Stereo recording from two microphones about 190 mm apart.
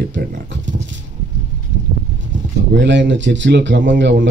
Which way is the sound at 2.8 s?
70° right (ahead or behind).